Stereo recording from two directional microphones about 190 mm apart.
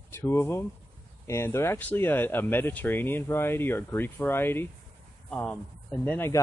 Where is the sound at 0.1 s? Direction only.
15° left (ahead or behind).